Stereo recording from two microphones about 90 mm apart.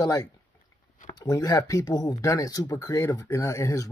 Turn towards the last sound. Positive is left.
turn(degrees=35)  # may be behind; listen again after turning